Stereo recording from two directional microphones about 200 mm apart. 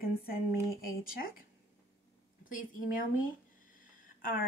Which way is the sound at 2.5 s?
45° left (ahead or behind).